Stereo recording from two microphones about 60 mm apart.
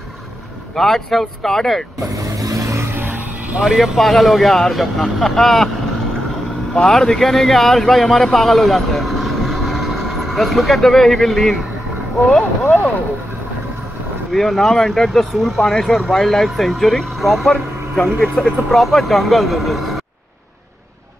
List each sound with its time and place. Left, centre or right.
0.7 s speech: centre
2.0 s vehicle: right
2.9 s music: right
3.5 s speech: centre
6.7 s speech: centre
12.6 s speech: left
14.3 s speech: centre